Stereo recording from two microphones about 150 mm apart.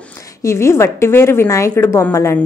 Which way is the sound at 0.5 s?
20° left (ahead or behind).